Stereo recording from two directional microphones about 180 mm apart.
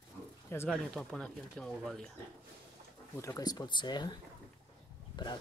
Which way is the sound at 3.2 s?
20° left (ahead or behind).